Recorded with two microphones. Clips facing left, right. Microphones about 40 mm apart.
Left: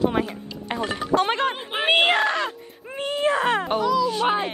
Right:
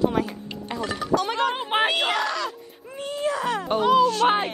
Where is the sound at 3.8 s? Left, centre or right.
Right.